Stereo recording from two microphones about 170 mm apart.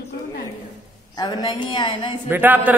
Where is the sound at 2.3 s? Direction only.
10° right (ahead or behind).